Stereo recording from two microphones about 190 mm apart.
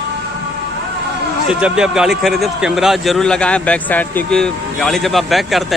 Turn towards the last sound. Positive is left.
turn(degrees=0)  # may be behind; listen again after turning